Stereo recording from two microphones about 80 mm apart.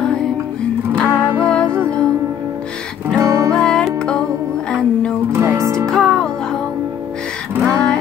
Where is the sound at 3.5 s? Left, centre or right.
Centre.